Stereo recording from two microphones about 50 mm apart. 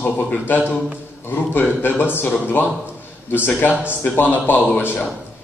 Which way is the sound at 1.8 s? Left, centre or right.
Left.